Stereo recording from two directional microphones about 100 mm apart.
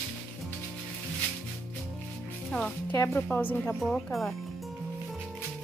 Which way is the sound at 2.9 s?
25° left (ahead or behind).